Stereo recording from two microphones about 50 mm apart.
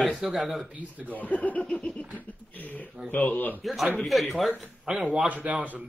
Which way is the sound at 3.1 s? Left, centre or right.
Left.